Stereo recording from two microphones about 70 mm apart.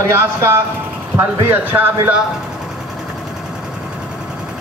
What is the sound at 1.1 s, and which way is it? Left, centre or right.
Speech, right.